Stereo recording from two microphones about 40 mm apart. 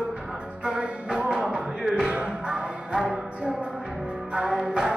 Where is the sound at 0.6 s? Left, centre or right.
Right.